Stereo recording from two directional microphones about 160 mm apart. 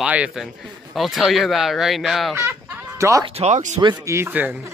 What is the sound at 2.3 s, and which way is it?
Chicken, 15° right (ahead or behind).